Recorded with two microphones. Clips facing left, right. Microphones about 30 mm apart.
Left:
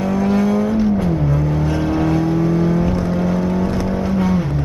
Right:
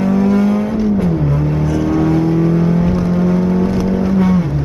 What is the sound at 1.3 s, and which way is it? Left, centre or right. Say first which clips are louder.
Vehicle: right 2 dB; right.